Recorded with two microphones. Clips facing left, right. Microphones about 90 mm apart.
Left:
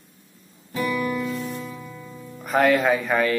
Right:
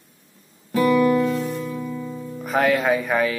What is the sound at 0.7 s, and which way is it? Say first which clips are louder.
Music: right 8 dB; 45° right (ahead or behind).